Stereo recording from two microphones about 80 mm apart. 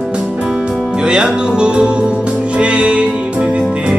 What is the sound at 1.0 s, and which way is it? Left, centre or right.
Speech, centre.